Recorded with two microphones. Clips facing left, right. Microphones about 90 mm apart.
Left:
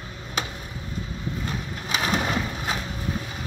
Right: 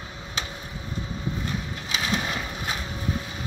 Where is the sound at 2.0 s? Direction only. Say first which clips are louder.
Left 3 dB; 40° left (ahead or behind).